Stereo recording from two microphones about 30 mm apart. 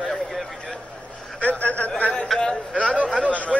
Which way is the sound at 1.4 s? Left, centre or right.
Left.